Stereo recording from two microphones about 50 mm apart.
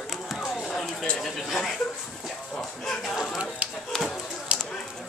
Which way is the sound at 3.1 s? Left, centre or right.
Centre.